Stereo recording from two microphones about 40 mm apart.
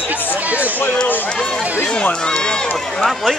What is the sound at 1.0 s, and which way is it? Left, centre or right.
Speech, left.